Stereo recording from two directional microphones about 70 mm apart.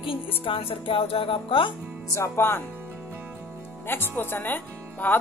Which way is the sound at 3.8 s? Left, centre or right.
Left.